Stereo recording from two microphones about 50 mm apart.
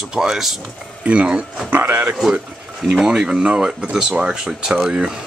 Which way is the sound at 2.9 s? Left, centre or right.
Centre.